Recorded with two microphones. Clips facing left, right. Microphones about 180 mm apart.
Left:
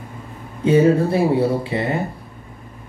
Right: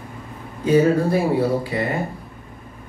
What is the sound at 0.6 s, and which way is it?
A man's voice, 25° left (ahead or behind).